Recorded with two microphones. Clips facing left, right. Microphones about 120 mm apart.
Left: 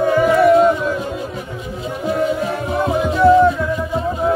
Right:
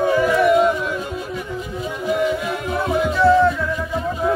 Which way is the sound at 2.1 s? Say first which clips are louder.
Left 2 dB; 35° left (ahead or behind).